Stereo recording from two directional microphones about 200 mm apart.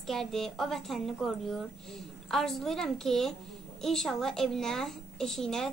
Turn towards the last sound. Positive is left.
turn(degrees=0)  # may be behind; listen again after turning